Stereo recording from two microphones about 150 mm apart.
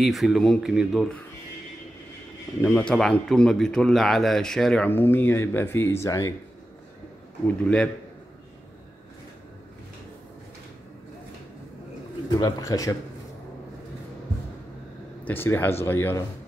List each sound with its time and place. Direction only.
0.0 s a man's voice: centre (ahead or behind)
2.6 s a man's voice: 10° left (ahead or behind)
7.4 s speech: 5° left (ahead or behind)
12.4 s a man's voice: 25° left (ahead or behind)
15.2 s speech: 15° left (ahead or behind)